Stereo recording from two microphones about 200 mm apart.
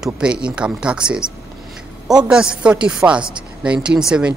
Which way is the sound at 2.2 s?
5° right (ahead or behind).